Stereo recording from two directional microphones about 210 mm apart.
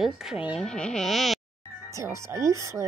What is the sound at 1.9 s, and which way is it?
Speech, 15° right (ahead or behind).